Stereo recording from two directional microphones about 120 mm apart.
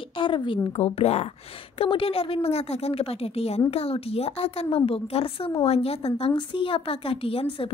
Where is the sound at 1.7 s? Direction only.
50° left (ahead or behind).